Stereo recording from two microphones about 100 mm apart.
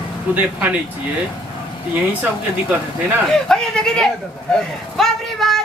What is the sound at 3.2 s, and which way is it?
Speech, 5° left (ahead or behind).